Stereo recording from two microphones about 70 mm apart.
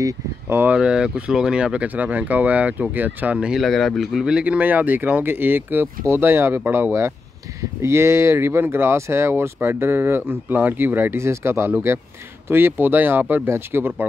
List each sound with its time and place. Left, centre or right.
0.5 s speech: right
0.7 s speech: centre
3.5 s speech: centre; by 14.0 s right